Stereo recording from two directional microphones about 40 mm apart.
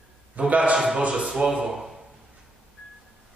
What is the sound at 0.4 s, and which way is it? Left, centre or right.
Speech, right.